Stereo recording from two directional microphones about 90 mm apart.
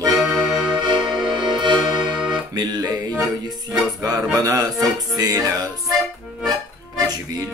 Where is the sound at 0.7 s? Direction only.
60° right (ahead or behind).